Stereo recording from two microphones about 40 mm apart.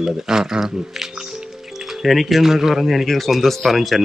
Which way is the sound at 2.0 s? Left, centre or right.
Centre.